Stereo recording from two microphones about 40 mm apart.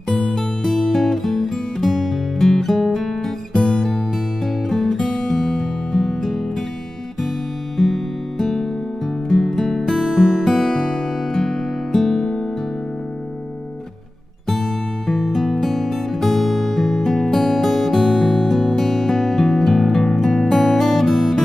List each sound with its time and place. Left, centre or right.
0.1 s music: centre
3.5 s music: centre
7.7 s music: centre
10.0 s music: centre
14.5 s music: centre